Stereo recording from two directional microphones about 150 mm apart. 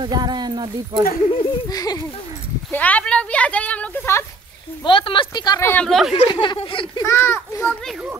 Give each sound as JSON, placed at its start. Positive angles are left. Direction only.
{"t": 0.0, "sound": "speech", "side_deg": -30}
{"t": 1.3, "sound": "speech", "side_deg": 30}
{"t": 2.7, "sound": "speech", "side_deg": 10}
{"t": 4.8, "sound": "speech", "side_deg": 35}
{"t": 5.7, "sound": "speech", "side_deg": 5}
{"t": 6.4, "sound": "speech", "side_deg": 35}
{"t": 7.0, "sound": "speech", "side_deg": 15}